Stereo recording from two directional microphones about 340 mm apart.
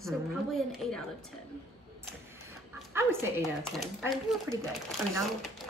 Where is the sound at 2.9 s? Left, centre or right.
Centre.